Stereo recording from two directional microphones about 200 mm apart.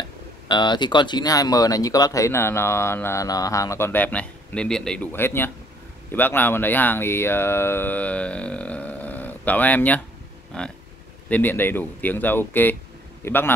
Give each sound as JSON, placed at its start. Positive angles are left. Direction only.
{"t": 0.5, "sound": "a man's voice", "side_deg": 20}